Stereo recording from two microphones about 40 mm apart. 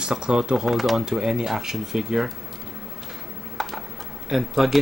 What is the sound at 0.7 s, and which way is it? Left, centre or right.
Speech, centre.